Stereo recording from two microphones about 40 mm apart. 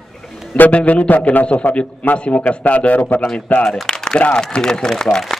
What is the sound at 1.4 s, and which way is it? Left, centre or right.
A man's voice, left.